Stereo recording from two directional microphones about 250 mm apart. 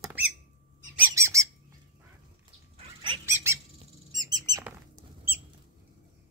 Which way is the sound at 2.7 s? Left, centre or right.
Right.